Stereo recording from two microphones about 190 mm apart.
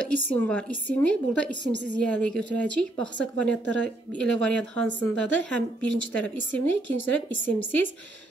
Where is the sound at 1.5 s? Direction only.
65° right (ahead or behind).